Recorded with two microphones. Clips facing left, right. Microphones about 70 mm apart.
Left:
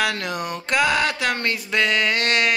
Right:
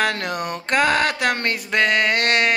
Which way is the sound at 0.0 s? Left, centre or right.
Right.